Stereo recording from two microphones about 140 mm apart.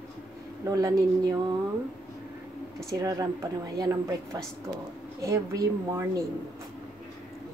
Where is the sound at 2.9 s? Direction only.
25° right (ahead or behind).